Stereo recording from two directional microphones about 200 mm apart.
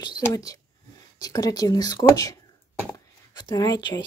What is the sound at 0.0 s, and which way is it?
Speech, 20° left (ahead or behind).